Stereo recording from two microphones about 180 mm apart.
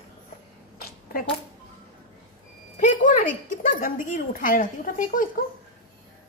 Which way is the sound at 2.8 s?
45° left (ahead or behind).